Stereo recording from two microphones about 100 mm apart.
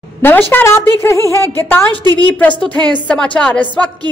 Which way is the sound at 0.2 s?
20° left (ahead or behind).